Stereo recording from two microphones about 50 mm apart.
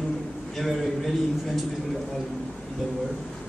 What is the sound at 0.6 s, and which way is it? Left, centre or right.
Speech, centre.